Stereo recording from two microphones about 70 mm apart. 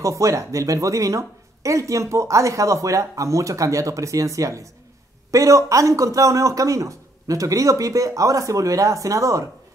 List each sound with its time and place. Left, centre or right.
0.0 s speech: right